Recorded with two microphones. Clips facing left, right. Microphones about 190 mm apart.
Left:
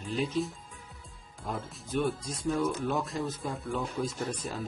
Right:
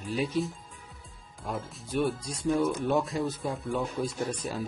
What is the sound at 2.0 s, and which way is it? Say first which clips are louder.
Speech: right 2 dB; 15° right (ahead or behind).